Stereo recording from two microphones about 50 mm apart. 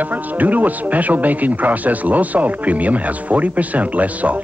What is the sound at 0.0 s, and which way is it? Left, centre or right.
Speech, right.